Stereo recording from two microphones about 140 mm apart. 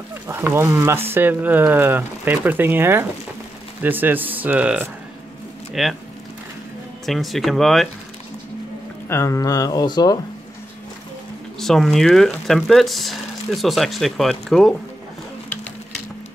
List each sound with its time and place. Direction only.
0.3 s speech: 15° right (ahead or behind)
7.1 s speech: centre (ahead or behind)
9.1 s speech: 20° left (ahead or behind)
11.6 s speech: centre (ahead or behind)